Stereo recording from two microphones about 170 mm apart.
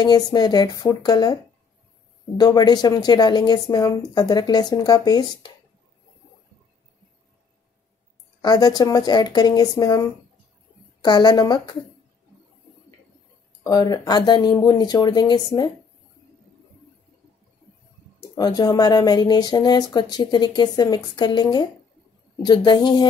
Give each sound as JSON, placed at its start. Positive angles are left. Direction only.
{"t": 0.0, "sound": "speech", "side_deg": 25}
{"t": 8.4, "sound": "speech", "side_deg": 25}
{"t": 13.7, "sound": "speech", "side_deg": 25}
{"t": 18.3, "sound": "speech", "side_deg": 25}